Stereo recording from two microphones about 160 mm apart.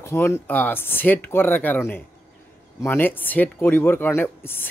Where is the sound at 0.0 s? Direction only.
15° left (ahead or behind).